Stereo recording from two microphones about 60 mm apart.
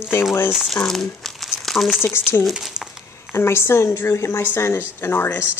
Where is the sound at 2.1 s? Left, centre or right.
Left.